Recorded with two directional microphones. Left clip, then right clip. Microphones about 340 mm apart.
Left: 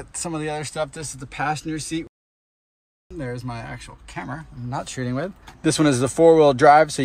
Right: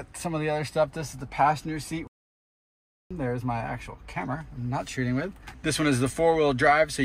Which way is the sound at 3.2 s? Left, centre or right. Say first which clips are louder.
Right 1 dB; centre.